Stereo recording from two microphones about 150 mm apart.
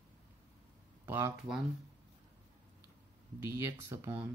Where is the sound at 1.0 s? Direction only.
15° right (ahead or behind).